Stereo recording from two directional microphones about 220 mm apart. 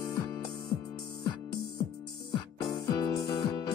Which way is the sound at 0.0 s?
15° left (ahead or behind).